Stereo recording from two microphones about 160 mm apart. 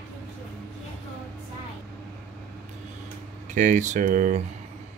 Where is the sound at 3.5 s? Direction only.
50° right (ahead or behind).